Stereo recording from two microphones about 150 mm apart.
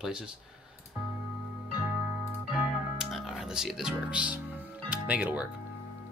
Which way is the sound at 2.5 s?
5° right (ahead or behind).